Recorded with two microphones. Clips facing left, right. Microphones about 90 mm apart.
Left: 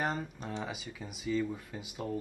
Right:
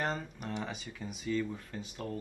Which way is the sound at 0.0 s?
10° left (ahead or behind).